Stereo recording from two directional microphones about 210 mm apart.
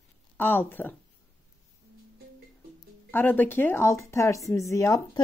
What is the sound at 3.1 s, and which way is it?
Speech, 10° left (ahead or behind).